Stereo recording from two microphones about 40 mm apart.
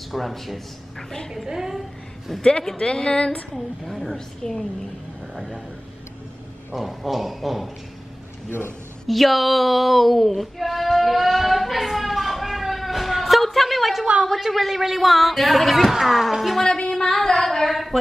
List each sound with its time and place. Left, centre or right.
0.1 s a woman's voice: centre
2.8 s a woman's voice: centre
3.5 s a woman's voice: centre
4.4 s a woman's voice: centre
5.3 s a man's voice: centre
6.7 s a woman's voice: centre
8.5 s speech: left
9.0 s a sound: centre
14.5 s a woman's voice: centre
16.5 s a woman's voice: centre
16.9 s a sound: centre